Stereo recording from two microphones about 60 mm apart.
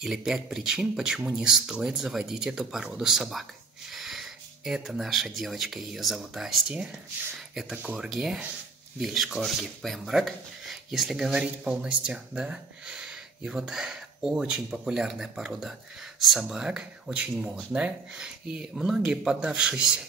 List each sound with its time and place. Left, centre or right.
0.0 s speech: centre
7.8 s speech: centre
8.1 s speech: centre
11.6 s speech: centre
16.6 s speech: centre